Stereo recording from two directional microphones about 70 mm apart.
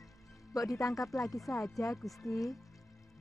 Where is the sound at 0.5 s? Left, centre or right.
Left.